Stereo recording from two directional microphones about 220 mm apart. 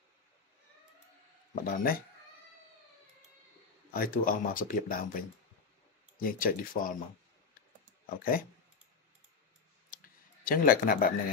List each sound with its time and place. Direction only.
1.5 s speech: 40° left (ahead or behind)
3.9 s speech: 40° left (ahead or behind)
8.2 s speech: 40° left (ahead or behind)
9.8 s clicking: 40° left (ahead or behind)